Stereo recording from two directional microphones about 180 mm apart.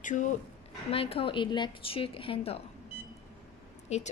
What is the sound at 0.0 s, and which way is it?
Speech, 45° left (ahead or behind).